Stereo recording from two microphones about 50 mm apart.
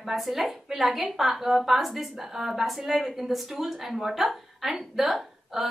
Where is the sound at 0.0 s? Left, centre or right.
Centre.